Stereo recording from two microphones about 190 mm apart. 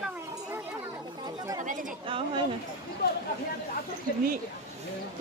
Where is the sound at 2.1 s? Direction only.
30° right (ahead or behind).